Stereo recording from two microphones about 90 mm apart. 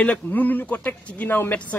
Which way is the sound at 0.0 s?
15° left (ahead or behind).